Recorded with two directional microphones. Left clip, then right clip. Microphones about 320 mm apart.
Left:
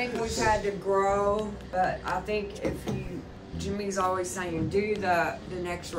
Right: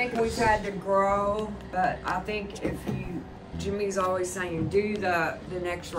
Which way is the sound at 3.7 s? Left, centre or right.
Centre.